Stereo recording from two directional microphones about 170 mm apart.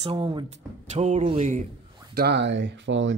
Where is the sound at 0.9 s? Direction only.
40° right (ahead or behind).